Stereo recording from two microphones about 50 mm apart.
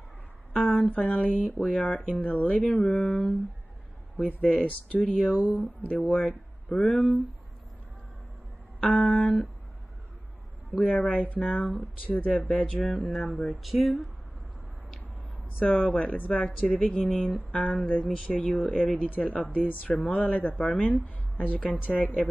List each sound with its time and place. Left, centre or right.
0.5 s speech: left
4.2 s speech: left
8.8 s speech: left
10.8 s speech: left
13.7 s speech: centre
15.6 s speech: left